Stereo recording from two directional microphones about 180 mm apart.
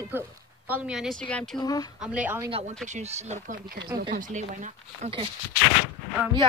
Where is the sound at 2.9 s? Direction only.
35° right (ahead or behind).